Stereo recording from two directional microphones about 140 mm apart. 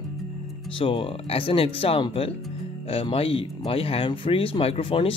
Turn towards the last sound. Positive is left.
turn(degrees=40)  # may be behind; listen again after turning